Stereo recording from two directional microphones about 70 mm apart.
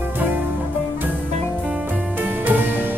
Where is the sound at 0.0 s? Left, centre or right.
Right.